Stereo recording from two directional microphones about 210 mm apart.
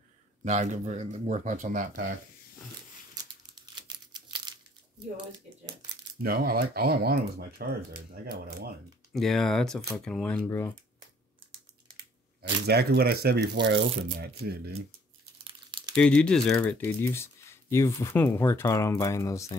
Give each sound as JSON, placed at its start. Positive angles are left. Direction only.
{"t": 0.4, "sound": "speech", "side_deg": -35}
{"t": 3.5, "sound": "crumpling", "side_deg": -20}
{"t": 6.2, "sound": "speech", "side_deg": -45}
{"t": 9.1, "sound": "speech", "side_deg": 0}
{"t": 12.4, "sound": "speech", "side_deg": -50}
{"t": 15.4, "sound": "crumpling", "side_deg": -25}
{"t": 15.9, "sound": "speech", "side_deg": 5}